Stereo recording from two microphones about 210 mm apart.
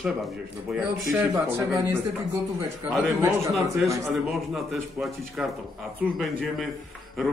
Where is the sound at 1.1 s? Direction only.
10° right (ahead or behind).